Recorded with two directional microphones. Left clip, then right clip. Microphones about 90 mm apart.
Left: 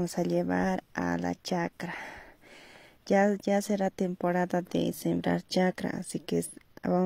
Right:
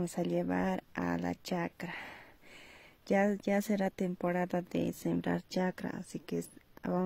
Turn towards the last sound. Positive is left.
turn(degrees=40)  # may be behind; listen again after turning